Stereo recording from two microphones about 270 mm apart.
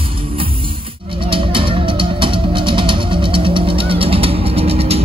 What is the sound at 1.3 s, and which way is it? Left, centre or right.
Music, centre.